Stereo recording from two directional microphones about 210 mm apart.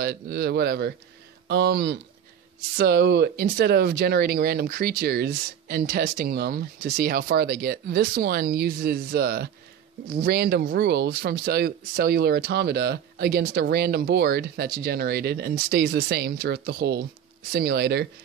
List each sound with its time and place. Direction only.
0.0 s speech: 50° right (ahead or behind)